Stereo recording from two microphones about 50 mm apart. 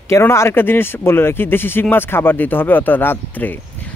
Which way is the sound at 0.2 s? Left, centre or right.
Left.